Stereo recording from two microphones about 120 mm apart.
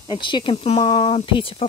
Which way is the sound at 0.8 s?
40° left (ahead or behind).